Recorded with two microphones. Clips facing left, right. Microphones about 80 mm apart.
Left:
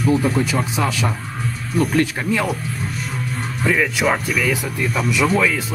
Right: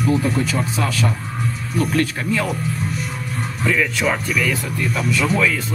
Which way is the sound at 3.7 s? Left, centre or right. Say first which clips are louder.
Left 2 dB; centre.